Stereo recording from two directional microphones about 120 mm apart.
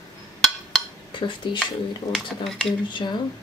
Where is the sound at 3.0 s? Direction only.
40° left (ahead or behind).